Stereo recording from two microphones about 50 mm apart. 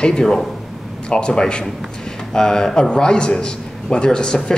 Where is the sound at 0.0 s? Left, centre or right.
Centre.